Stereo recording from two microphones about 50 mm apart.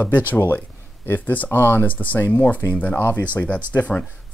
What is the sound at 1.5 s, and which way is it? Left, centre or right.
Speech, left.